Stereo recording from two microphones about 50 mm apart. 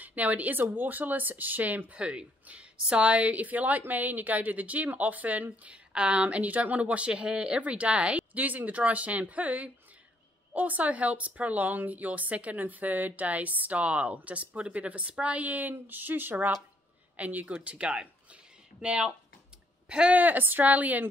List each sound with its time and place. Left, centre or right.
0.0 s speech: right